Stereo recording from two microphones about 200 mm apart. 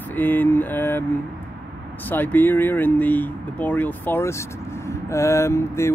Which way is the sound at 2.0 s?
10° left (ahead or behind).